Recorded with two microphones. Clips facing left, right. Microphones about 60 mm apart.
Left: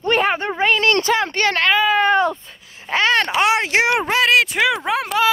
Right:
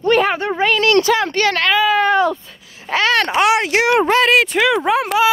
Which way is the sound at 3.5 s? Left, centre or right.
Left.